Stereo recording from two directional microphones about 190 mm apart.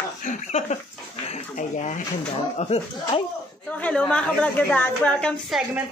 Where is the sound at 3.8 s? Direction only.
5° left (ahead or behind).